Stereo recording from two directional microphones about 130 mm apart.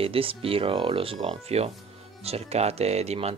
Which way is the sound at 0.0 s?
45° right (ahead or behind).